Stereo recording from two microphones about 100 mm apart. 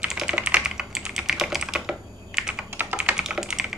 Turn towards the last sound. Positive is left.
turn(degrees=-5)  # may be behind; listen again after turning